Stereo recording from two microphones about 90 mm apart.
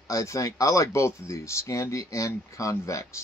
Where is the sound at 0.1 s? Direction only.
40° left (ahead or behind).